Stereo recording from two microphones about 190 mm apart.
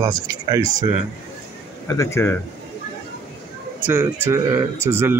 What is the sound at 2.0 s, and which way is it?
Speech, 15° left (ahead or behind).